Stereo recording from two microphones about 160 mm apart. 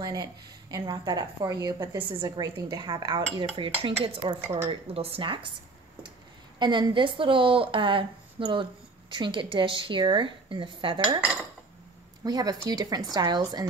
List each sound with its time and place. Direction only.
0.0 s a woman's voice: 25° right (ahead or behind)
6.6 s speech: 30° right (ahead or behind)
12.3 s a woman's voice: 25° right (ahead or behind)